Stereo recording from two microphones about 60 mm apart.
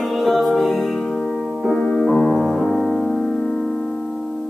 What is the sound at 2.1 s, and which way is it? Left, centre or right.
Piano, centre.